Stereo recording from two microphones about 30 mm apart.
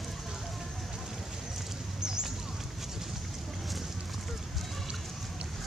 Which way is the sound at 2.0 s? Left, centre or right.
Right.